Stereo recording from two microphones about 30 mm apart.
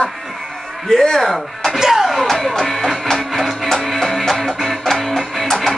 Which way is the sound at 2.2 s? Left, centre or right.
Centre.